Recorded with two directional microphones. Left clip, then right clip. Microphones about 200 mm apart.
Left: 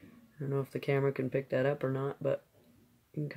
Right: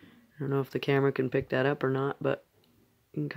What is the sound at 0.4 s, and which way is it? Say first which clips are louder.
Speech: right 5 dB; 45° right (ahead or behind).